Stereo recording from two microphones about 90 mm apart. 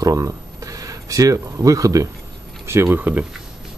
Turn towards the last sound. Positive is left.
turn(degrees=-20)  # may be behind; listen again after turning